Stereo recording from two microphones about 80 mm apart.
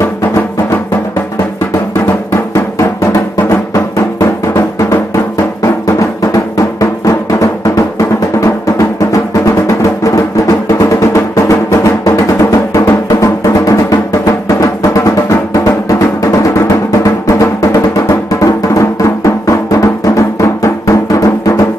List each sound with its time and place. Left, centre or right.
0.0 s music: left
2.5 s music: left
14.5 s drum: left
17.0 s music: left